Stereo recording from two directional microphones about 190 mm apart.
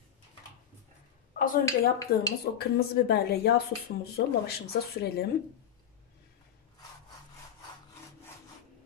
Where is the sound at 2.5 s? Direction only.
55° left (ahead or behind).